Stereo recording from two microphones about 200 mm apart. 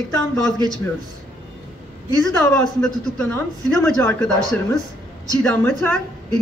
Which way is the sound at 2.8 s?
5° left (ahead or behind).